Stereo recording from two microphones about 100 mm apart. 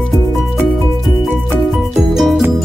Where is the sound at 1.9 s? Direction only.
5° right (ahead or behind).